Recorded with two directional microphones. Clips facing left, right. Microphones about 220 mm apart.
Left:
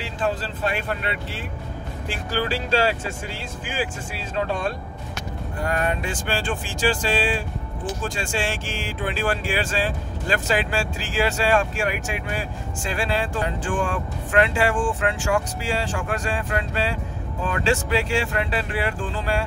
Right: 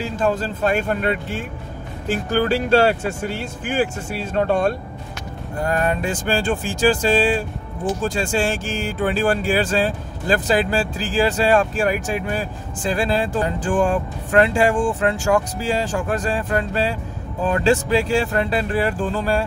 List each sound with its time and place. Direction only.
0.0 s speech: 45° right (ahead or behind)
5.6 s speech: 40° right (ahead or behind)